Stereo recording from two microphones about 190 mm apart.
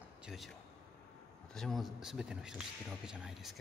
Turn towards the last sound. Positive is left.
turn(degrees=0)  # may be behind; listen again after turning